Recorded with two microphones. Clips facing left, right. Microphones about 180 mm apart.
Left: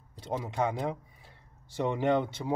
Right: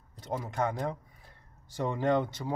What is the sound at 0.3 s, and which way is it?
Speech, 10° left (ahead or behind).